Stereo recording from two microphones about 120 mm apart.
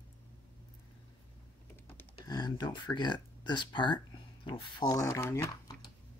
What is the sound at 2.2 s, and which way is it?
Speech, 35° left (ahead or behind).